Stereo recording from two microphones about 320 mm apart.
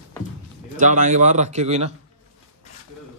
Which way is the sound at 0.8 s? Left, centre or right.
Right.